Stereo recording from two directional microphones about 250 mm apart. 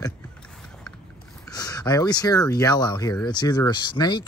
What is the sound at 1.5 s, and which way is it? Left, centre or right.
Speech, centre.